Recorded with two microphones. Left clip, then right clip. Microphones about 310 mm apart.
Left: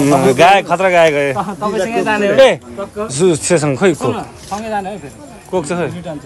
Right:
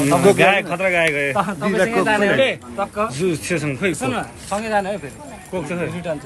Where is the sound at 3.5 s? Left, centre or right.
Centre.